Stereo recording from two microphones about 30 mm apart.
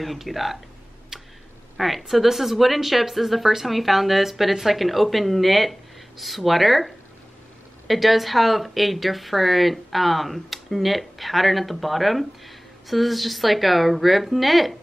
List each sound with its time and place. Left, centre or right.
0.0 s speech: centre
1.1 s tick-tock: centre
1.8 s speech: centre
7.9 s speech: centre